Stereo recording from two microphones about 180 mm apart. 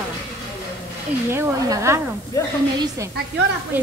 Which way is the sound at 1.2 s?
15° right (ahead or behind).